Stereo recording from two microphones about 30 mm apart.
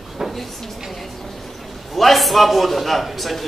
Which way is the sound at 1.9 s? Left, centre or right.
Centre.